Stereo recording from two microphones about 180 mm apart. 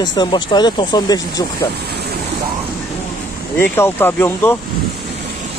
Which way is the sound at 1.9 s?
65° right (ahead or behind).